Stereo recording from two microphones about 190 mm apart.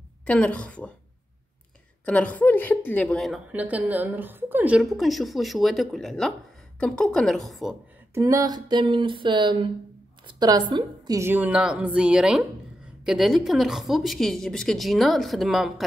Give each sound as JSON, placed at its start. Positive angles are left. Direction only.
{"t": 0.2, "sound": "a woman's voice", "side_deg": 5}
{"t": 2.0, "sound": "a woman's voice", "side_deg": 5}
{"t": 8.1, "sound": "a sound", "side_deg": -15}
{"t": 10.2, "sound": "a woman's voice", "side_deg": -20}